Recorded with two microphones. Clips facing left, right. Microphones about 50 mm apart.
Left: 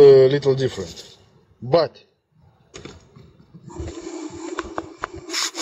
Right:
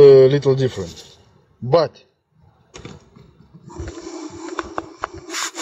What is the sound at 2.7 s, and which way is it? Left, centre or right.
Basketball bounce, centre.